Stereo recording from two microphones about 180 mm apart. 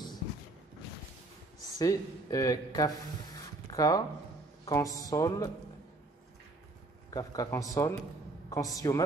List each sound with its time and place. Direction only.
1.8 s speech: 20° left (ahead or behind)
3.3 s a sound: 20° left (ahead or behind)
4.6 s speech: 20° left (ahead or behind)
7.1 s speech: 20° left (ahead or behind)